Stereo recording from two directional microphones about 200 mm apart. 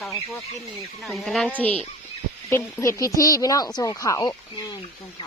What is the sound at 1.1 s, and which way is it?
Speech, centre (ahead or behind).